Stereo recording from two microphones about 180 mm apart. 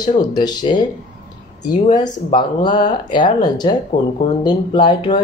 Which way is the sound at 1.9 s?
25° left (ahead or behind).